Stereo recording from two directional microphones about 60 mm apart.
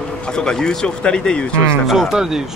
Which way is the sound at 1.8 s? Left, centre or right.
Centre.